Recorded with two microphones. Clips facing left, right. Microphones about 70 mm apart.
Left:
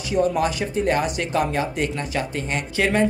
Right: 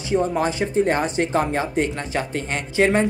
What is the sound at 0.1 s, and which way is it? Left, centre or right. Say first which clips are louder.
Speech: even; right.